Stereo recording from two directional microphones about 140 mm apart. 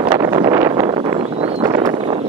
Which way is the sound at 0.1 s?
30° right (ahead or behind).